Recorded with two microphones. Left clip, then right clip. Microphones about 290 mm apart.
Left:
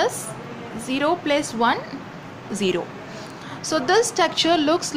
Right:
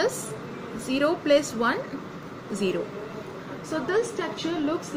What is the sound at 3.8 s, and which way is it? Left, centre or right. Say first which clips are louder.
Speech: left 8 dB; left.